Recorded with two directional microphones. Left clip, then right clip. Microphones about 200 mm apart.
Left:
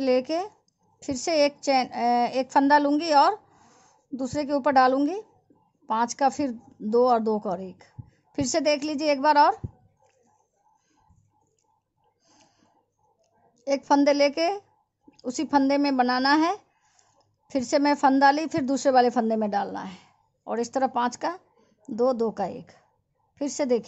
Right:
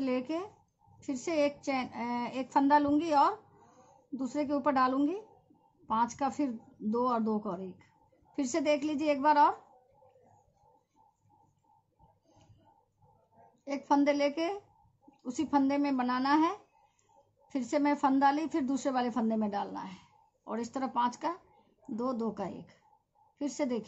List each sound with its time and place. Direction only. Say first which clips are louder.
0.0 s a woman's voice: left 10 dB; 55° left (ahead or behind)
13.7 s a woman's voice: left 8 dB; 55° left (ahead or behind)